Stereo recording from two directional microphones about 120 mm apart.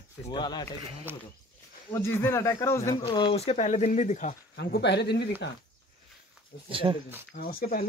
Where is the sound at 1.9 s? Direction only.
20° left (ahead or behind).